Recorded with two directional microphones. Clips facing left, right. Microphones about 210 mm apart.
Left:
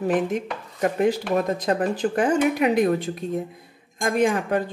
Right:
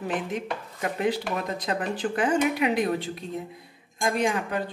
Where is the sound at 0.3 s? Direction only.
45° left (ahead or behind).